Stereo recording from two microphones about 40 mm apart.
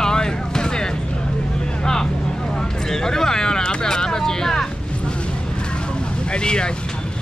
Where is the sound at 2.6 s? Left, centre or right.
Centre.